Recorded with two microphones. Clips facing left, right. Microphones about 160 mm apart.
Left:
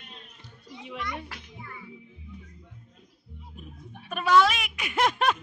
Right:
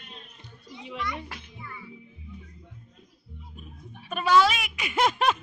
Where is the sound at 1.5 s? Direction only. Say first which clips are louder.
Right 1 dB; 45° left (ahead or behind).